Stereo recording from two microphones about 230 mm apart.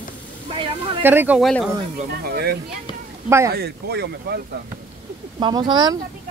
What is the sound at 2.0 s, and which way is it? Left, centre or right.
Speech, right.